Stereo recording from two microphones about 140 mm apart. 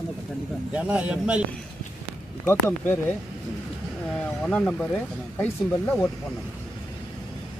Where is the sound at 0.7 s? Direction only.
10° right (ahead or behind).